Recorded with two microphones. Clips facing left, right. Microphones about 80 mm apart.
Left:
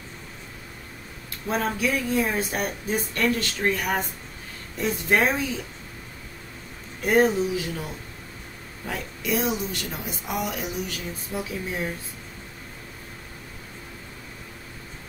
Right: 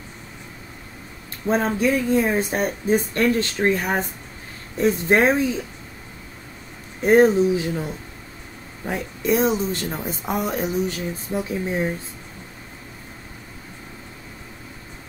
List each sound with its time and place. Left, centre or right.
1.5 s speech: right
7.0 s speech: right